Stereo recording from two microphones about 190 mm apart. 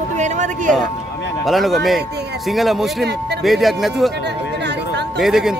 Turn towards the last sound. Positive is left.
turn(degrees=0)  # may be behind; listen again after turning